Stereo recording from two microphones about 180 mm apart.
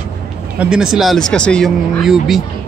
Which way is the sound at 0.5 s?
5° right (ahead or behind).